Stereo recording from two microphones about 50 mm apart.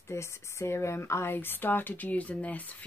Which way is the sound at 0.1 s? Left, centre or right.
Left.